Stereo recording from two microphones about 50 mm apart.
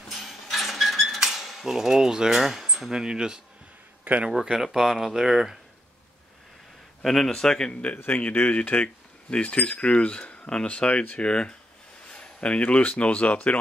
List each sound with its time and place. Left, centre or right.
0.1 s a sound: centre
1.2 s cutlery: centre
1.7 s speech: centre
4.0 s a sound: right
4.3 s speech: centre
7.0 s speech: centre
7.9 s speech: left